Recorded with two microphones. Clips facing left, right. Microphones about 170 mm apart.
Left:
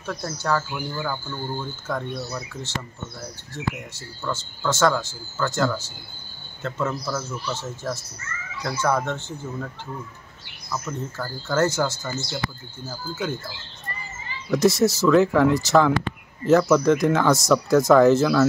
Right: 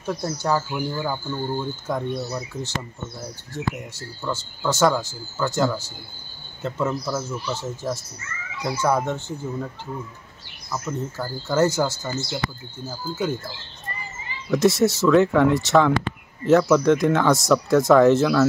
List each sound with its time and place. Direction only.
0.0 s speech: 15° right (ahead or behind)
4.2 s speech: 10° right (ahead or behind)
10.7 s speech: 10° right (ahead or behind)
14.5 s speech: centre (ahead or behind)